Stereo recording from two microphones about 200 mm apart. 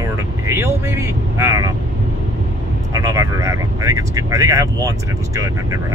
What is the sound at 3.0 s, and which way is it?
Speech, 15° right (ahead or behind).